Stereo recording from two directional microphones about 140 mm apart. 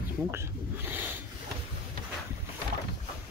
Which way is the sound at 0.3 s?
15° right (ahead or behind).